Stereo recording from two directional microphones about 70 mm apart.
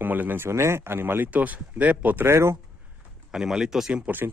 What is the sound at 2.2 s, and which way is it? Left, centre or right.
Speech, right.